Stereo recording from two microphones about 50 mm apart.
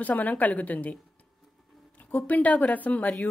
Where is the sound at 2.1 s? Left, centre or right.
Left.